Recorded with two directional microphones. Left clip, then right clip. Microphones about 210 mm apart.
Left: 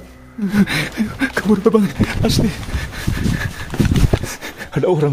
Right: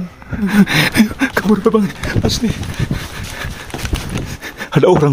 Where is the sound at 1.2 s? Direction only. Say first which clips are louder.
Right 2 dB; 10° right (ahead or behind).